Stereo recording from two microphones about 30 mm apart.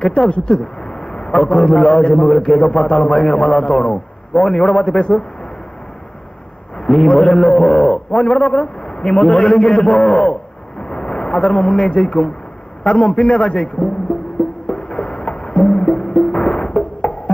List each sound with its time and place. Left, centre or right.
0.2 s a man's voice: left
6.8 s a man's voice: left
8.4 s speech: left
10.8 s a sound: left
12.0 s speech: left
14.1 s music: left
17.1 s music: left